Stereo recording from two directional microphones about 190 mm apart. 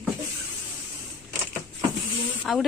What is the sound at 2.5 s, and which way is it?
Speech, centre (ahead or behind).